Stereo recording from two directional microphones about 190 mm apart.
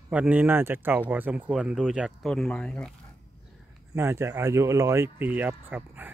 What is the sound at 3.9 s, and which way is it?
Speech, 15° right (ahead or behind).